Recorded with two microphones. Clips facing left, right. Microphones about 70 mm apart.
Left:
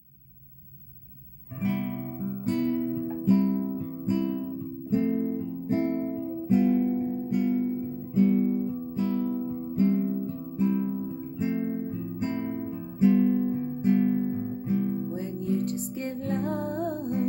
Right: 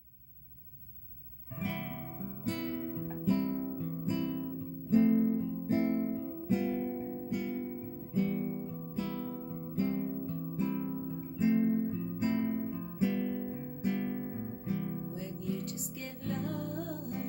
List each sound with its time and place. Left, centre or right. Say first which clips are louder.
1.6 s music: left 9 dB; centre
5.9 s guitar: left 4 dB; centre
9.8 s music: left 8 dB; centre
12.4 s guitar: left 2 dB; centre
15.1 s music: left 9 dB; left